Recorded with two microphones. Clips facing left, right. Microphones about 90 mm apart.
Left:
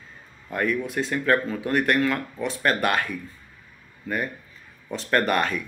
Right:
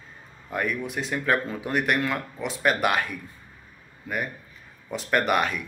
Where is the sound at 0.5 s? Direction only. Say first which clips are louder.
Left 3 dB; 15° right (ahead or behind).